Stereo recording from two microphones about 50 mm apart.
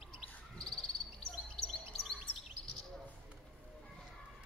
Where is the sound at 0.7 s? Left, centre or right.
Centre.